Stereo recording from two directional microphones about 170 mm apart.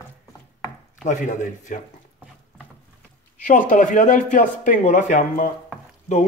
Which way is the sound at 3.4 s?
50° left (ahead or behind).